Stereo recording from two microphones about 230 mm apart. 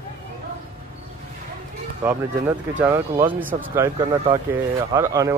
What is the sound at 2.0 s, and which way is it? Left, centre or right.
Speech, centre.